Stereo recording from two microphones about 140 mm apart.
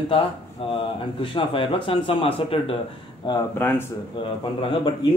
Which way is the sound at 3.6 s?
15° left (ahead or behind).